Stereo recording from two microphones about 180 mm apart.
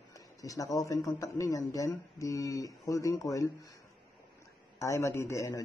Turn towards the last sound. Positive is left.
turn(degrees=15)  # may be behind; listen again after turning